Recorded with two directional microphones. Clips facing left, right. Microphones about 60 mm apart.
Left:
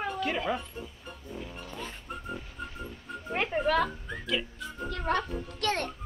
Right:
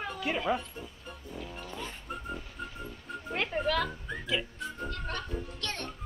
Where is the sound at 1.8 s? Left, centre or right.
Centre.